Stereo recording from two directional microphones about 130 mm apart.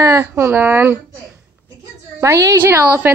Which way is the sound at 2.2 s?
25° right (ahead or behind).